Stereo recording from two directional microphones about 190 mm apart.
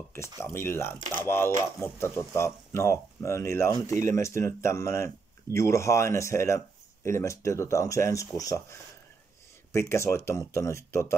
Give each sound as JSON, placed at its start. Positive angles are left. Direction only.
{"t": 0.4, "sound": "speech", "side_deg": 15}